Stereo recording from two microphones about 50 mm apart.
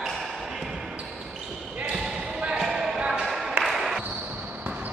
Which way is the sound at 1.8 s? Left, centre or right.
Centre.